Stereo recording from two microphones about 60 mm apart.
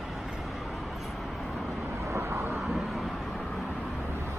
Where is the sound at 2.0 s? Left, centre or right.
Right.